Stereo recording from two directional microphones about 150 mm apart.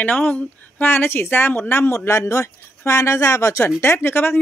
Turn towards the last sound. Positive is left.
turn(degrees=15)  # may be behind; listen again after turning